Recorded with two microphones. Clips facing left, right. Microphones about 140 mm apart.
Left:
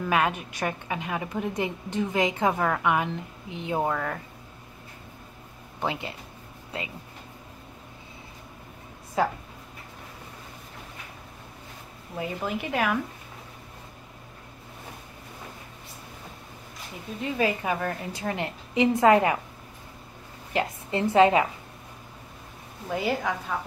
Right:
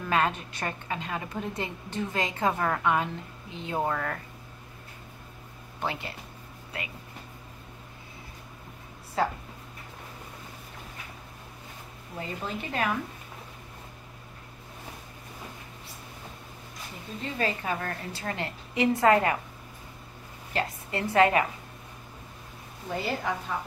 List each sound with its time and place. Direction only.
0.1 s a woman's voice: 10° left (ahead or behind)
5.8 s a woman's voice: 20° left (ahead or behind)
12.2 s a woman's voice: 10° left (ahead or behind)
17.4 s a woman's voice: 15° left (ahead or behind)
20.5 s a woman's voice: 20° left (ahead or behind)
22.8 s a woman's voice: 10° left (ahead or behind)